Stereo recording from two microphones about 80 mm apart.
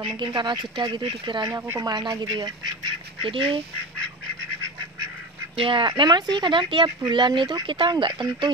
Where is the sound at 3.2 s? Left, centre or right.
Right.